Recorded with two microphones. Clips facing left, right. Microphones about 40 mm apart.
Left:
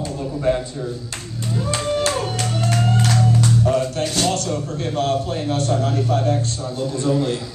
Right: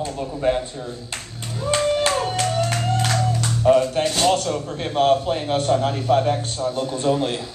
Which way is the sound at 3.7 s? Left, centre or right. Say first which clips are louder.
Right 7 dB; right.